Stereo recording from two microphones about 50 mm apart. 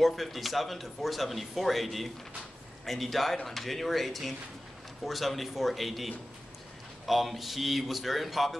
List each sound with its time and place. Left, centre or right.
0.0 s speech: centre